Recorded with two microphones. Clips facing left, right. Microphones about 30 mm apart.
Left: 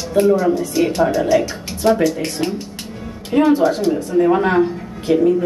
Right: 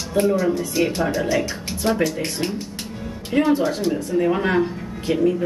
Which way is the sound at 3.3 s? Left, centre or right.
Centre.